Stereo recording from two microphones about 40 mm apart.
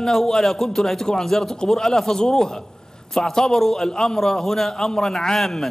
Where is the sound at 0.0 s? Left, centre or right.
Centre.